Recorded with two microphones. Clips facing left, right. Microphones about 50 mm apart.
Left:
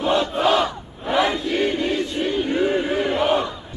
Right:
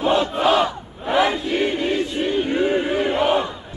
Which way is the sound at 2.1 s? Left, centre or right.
Right.